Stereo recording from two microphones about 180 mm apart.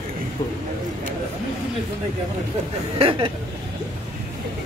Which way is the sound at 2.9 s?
30° right (ahead or behind).